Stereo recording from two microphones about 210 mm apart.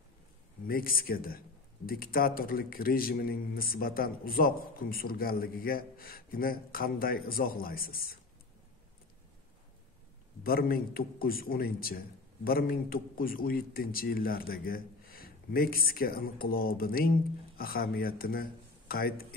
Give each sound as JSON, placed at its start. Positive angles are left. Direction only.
{"t": 0.7, "sound": "a man's voice", "side_deg": 45}
{"t": 10.4, "sound": "a man's voice", "side_deg": 45}